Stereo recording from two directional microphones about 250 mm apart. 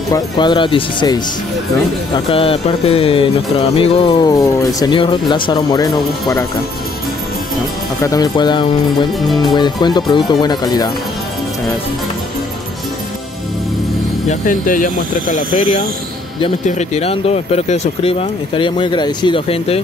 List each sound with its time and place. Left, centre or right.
0.1 s speech: centre
2.1 s music: left
8.0 s speech: centre
14.3 s speech: left
16.3 s music: left